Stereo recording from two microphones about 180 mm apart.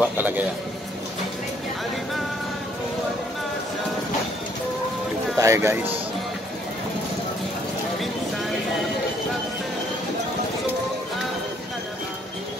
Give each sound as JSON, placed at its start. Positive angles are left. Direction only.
{"t": 0.0, "sound": "a man's voice", "side_deg": -10}
{"t": 5.4, "sound": "speech", "side_deg": -15}